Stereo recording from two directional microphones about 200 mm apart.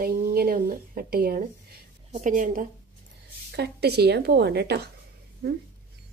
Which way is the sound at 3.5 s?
55° right (ahead or behind).